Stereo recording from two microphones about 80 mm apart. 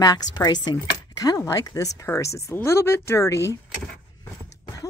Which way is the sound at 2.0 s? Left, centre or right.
Left.